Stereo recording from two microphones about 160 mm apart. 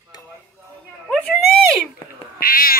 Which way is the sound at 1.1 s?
Centre (ahead or behind).